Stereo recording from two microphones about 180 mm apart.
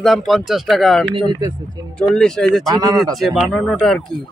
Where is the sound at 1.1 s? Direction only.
25° right (ahead or behind).